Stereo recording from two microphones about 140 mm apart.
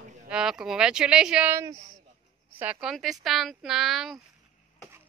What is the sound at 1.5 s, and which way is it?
Speech, 25° right (ahead or behind).